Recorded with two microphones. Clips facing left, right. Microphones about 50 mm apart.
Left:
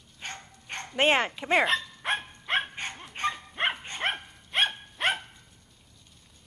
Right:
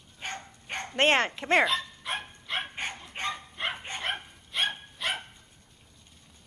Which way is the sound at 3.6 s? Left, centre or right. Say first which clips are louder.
Left 6 dB; left.